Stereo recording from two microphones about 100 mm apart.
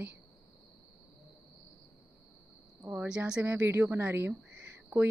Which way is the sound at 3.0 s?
10° right (ahead or behind).